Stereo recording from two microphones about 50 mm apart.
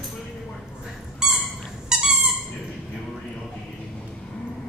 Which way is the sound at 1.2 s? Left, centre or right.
Centre.